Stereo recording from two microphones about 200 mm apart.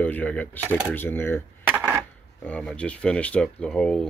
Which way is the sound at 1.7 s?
10° right (ahead or behind).